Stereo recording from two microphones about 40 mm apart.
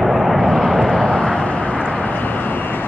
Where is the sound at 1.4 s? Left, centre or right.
Left.